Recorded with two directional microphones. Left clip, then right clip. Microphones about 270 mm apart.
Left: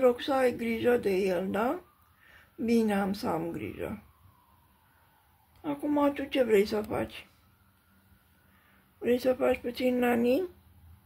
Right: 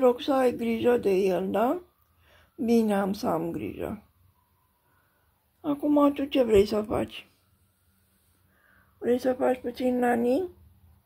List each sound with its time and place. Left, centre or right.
0.0 s speech: centre
5.6 s speech: centre
9.1 s speech: centre